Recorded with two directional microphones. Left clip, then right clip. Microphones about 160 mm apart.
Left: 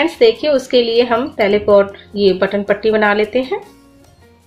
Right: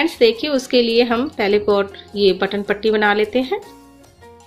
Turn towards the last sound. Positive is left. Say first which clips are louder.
# left 2 dB
turn(degrees=-35)  # may be behind; listen again after turning